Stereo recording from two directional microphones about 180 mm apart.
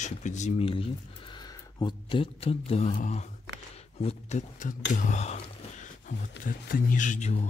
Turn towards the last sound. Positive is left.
turn(degrees=40)  # may be behind; listen again after turning